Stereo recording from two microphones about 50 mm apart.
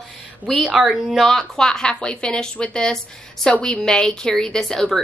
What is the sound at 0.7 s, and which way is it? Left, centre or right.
Speech, centre.